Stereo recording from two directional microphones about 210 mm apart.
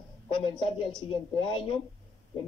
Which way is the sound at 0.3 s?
25° left (ahead or behind).